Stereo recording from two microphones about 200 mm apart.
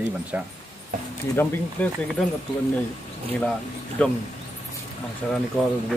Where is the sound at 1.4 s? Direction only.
10° left (ahead or behind).